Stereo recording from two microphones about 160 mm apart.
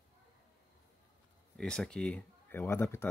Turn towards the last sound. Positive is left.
turn(degrees=15)  # may be behind; listen again after turning